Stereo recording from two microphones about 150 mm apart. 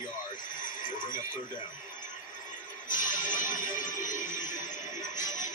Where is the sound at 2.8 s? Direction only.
60° left (ahead or behind).